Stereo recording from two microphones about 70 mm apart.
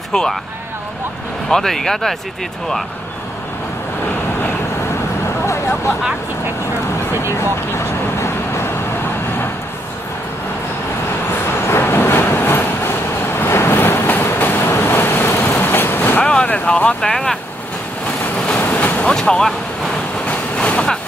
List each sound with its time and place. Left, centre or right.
0.1 s speech: centre
1.5 s speech: centre
5.4 s a sound: left
7.3 s speech: left
11.6 s vehicle: left
16.2 s speech: centre
17.1 s speech: centre
18.2 s vehicle: left
19.1 s speech: centre
20.2 s vehicle: centre